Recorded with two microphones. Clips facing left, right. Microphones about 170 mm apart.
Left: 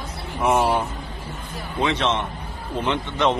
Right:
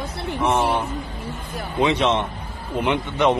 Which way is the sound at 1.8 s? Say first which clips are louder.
Right 3 dB; 15° right (ahead or behind).